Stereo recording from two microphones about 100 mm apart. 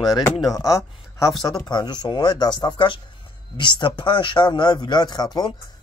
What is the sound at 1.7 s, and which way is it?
Speech, 45° left (ahead or behind).